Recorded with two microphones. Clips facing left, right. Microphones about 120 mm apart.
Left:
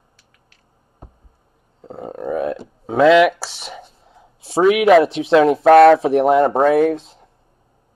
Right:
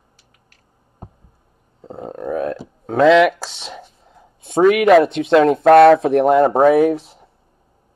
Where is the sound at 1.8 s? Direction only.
Centre (ahead or behind).